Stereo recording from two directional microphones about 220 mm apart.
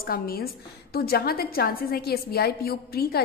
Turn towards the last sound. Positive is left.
turn(degrees=45)  # may be behind; listen again after turning